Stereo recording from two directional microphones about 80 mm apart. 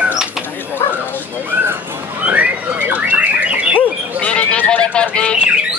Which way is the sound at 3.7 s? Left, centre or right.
Centre.